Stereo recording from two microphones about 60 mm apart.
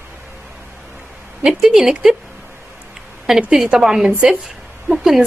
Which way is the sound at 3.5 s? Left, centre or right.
Centre.